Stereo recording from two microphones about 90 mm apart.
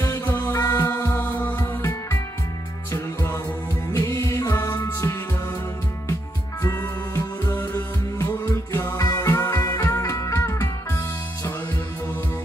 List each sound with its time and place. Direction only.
0.0 s music: 25° left (ahead or behind)
6.6 s music: 30° left (ahead or behind)